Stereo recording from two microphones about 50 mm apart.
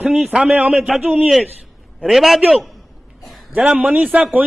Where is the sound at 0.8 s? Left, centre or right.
Centre.